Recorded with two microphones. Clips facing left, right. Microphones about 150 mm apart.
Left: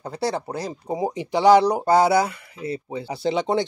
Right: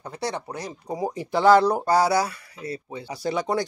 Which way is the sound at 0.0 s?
30° left (ahead or behind).